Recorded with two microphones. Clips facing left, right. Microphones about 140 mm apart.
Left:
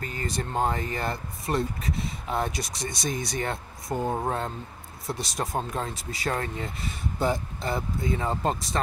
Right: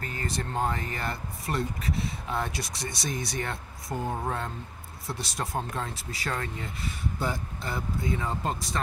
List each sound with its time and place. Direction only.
0.0 s speech: 25° left (ahead or behind)
6.3 s speech: 35° left (ahead or behind)
7.2 s speech: 20° left (ahead or behind)